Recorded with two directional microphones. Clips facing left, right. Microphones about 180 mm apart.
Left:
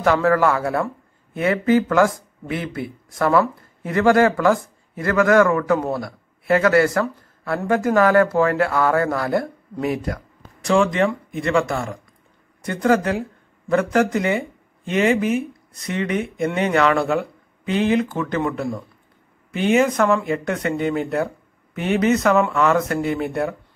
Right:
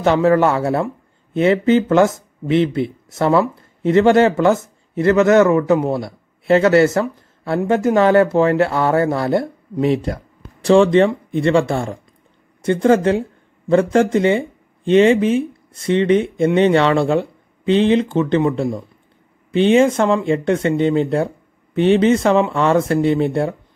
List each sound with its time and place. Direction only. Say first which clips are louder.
0.0 s speech: right 3 dB; 25° right (ahead or behind)